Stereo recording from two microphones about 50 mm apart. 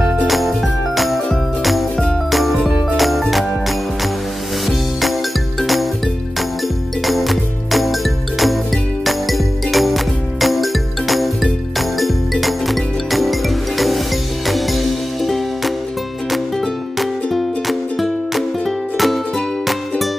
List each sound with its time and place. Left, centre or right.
0.3 s music: centre
5.6 s music: centre
7.1 s music: centre
17.0 s music: centre